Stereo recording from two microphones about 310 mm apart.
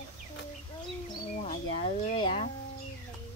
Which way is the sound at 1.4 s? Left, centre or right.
Centre.